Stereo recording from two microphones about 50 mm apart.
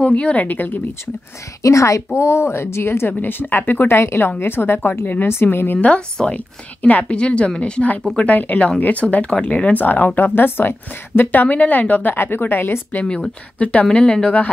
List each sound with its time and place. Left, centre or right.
0.0 s speech: left
1.6 s a woman's voice: left
2.1 s speech: left
3.2 s speech: left
5.3 s speech: left
5.8 s a woman's voice: left
8.2 s a woman's voice: left
9.8 s speech: left
11.4 s speech: left
12.1 s speech: left
13.0 s speech: centre
13.6 s a woman's voice: left